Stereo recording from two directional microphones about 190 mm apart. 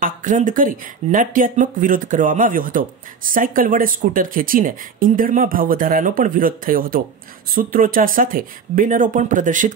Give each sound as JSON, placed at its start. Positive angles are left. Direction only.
{"t": 0.0, "sound": "speech", "side_deg": -45}